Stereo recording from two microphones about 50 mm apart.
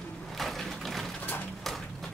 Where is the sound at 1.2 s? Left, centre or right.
Left.